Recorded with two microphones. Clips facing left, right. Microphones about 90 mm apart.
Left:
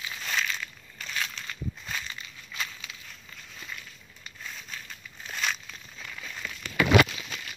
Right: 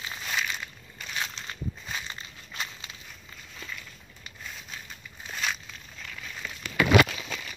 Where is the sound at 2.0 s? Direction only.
30° right (ahead or behind).